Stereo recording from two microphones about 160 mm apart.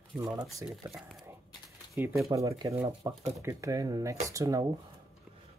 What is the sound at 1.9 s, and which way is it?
Speech, 15° right (ahead or behind).